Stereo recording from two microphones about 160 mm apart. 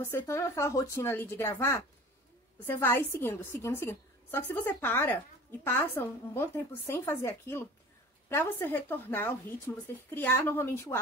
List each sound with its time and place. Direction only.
0.2 s a woman's voice: 20° left (ahead or behind)